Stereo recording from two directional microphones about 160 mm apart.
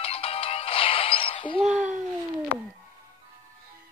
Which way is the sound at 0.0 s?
35° left (ahead or behind).